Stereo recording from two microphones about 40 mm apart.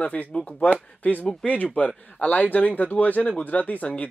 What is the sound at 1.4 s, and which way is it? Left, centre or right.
Speech, left.